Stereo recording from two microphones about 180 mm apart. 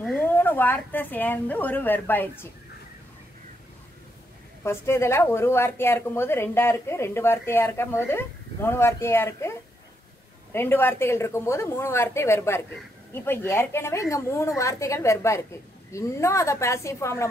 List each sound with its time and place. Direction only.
0.0 s a woman's voice: 10° left (ahead or behind)
4.6 s a woman's voice: 15° left (ahead or behind)